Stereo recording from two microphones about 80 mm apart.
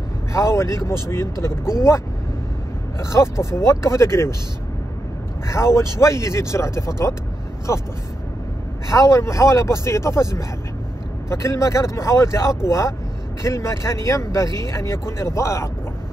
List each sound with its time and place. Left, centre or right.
0.3 s speech: left
3.0 s speech: left
5.5 s speech: left